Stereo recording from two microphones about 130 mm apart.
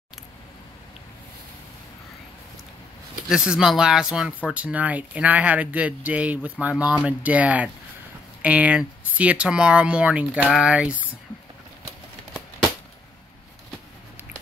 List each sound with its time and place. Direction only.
3.3 s speech: 5° right (ahead or behind)